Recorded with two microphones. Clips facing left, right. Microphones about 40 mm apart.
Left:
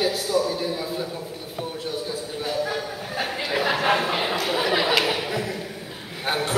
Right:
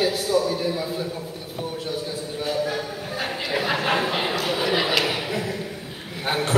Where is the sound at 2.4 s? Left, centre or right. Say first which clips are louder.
Right 1 dB; centre.